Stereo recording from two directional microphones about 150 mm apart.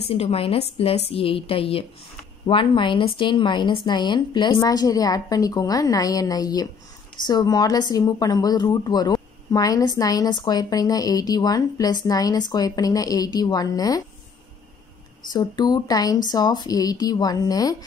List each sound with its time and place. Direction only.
0.1 s a woman's voice: 40° left (ahead or behind); by 14.0 s 25° left (ahead or behind)
15.3 s speech: 25° left (ahead or behind)